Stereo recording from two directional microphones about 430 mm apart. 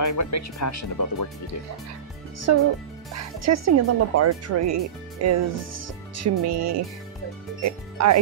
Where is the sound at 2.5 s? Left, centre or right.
Right.